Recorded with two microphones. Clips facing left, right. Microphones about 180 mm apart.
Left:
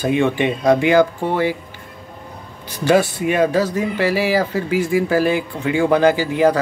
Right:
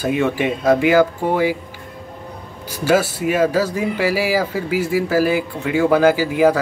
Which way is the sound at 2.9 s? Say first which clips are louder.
Left 1 dB; 5° right (ahead or behind).